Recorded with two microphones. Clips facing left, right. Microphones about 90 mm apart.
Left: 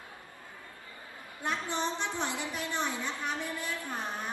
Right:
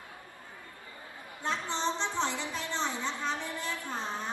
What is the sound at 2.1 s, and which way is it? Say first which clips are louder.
Speech: right 2 dB; 15° left (ahead or behind).